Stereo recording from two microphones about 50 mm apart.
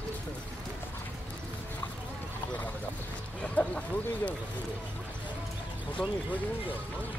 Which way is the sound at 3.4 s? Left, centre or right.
Left.